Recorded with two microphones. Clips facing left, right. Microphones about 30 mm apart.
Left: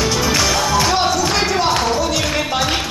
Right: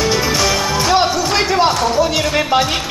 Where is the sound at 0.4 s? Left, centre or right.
Centre.